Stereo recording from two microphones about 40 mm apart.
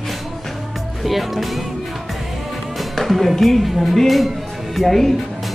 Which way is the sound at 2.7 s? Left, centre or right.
Centre.